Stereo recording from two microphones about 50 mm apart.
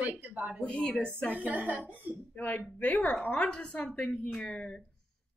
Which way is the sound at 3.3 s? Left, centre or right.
Centre.